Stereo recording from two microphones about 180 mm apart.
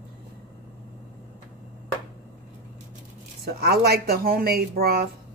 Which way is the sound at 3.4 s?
60° right (ahead or behind).